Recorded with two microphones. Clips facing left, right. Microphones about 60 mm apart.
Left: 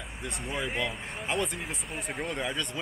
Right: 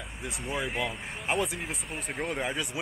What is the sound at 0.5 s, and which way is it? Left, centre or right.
Speech, centre.